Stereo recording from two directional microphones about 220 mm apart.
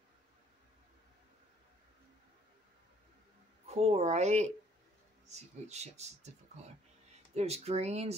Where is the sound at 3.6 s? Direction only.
30° right (ahead or behind).